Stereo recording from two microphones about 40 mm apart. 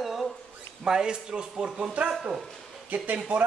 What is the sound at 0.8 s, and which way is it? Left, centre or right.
Speech, centre.